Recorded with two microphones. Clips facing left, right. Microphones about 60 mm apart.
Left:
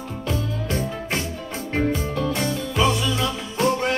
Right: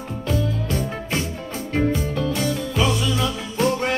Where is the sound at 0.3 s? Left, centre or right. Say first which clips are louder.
Right 2 dB; left.